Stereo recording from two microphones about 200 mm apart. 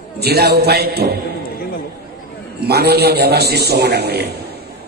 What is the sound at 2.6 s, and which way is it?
A man's voice, 55° right (ahead or behind).